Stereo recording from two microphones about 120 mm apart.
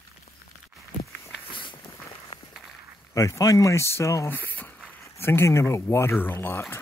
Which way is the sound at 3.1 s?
25° left (ahead or behind).